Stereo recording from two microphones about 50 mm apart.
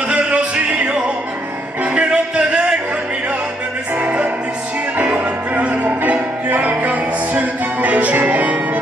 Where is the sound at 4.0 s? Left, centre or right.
Right.